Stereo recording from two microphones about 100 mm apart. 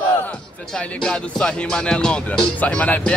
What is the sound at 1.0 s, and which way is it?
Music, 5° left (ahead or behind).